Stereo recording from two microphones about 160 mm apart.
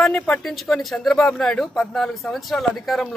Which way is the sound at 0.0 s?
5° left (ahead or behind).